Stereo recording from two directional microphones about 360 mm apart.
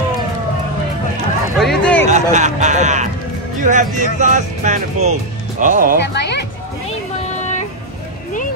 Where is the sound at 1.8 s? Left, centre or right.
Centre.